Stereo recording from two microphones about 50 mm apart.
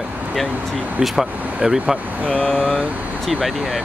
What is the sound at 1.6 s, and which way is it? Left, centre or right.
Speech, centre.